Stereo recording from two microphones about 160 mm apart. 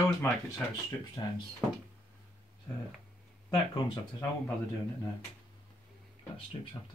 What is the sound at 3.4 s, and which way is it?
Speech, 30° left (ahead or behind).